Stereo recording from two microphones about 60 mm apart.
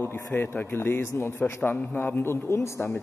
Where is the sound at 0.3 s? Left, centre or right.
Left.